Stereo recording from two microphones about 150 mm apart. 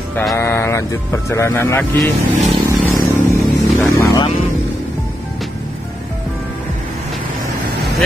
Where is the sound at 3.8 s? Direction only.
20° left (ahead or behind).